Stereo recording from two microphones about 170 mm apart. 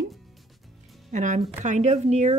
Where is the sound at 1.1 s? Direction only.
45° right (ahead or behind).